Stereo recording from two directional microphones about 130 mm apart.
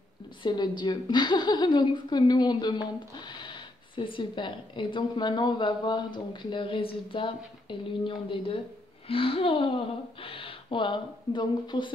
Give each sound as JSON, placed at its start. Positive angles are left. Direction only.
{"t": 0.4, "sound": "a woman's voice", "side_deg": 35}